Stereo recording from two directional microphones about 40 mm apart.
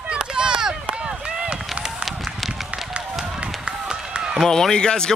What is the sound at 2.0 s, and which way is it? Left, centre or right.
Run, centre.